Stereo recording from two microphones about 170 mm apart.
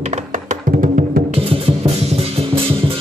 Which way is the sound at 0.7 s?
50° right (ahead or behind).